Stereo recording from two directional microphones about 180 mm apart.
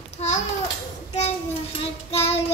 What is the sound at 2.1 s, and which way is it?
Child singing, 35° left (ahead or behind).